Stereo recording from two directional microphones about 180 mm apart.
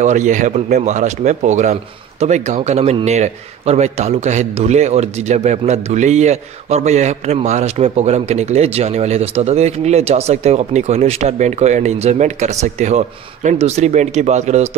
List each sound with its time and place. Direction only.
0.0 s a man's voice: 40° right (ahead or behind)